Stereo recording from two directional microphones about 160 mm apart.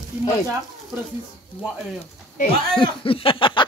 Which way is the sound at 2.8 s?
35° left (ahead or behind).